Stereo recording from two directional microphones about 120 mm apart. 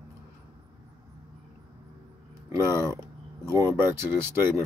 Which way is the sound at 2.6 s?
30° left (ahead or behind).